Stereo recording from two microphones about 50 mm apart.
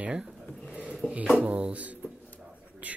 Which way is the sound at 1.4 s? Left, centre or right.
Right.